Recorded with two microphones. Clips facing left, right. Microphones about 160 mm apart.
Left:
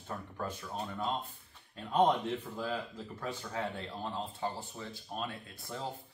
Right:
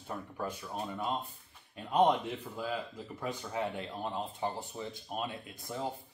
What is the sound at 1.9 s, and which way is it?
Speech, 10° right (ahead or behind).